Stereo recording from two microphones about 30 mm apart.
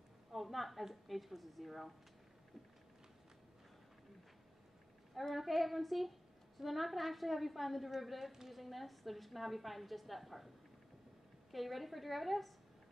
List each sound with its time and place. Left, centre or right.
0.3 s a woman's voice: centre
5.3 s a woman's voice: centre
8.3 s a woman's voice: centre
8.5 s a woman's voice: centre
11.5 s a woman's voice: centre